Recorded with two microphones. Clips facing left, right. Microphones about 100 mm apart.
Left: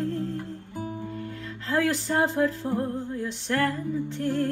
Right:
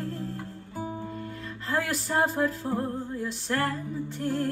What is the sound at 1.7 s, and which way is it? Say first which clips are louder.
Music: left 3 dB; 15° right (ahead or behind).